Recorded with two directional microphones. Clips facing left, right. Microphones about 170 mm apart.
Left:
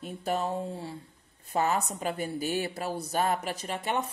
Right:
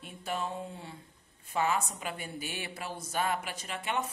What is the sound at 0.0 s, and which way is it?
Speech, 40° left (ahead or behind).